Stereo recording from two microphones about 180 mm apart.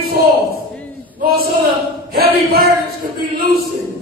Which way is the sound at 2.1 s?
60° right (ahead or behind).